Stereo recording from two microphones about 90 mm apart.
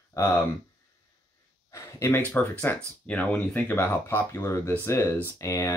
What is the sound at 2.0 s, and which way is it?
Speech, 20° left (ahead or behind).